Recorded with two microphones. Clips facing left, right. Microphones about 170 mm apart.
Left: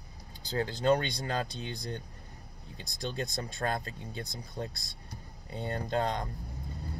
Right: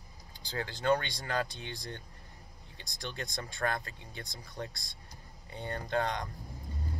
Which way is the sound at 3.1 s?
35° left (ahead or behind).